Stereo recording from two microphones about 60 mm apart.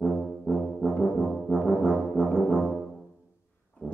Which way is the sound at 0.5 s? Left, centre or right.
Centre.